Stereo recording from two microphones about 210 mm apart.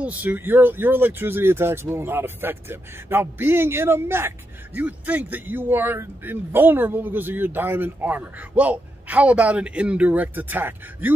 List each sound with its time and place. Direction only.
0.0 s speech: 5° right (ahead or behind)